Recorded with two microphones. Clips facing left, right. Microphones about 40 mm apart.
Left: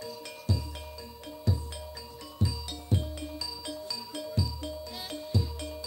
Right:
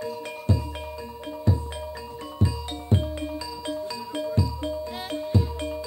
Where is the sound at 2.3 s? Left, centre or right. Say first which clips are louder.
Right 6 dB; right.